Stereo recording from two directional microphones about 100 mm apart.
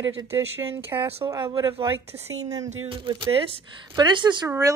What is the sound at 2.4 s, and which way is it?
Speech, 35° right (ahead or behind).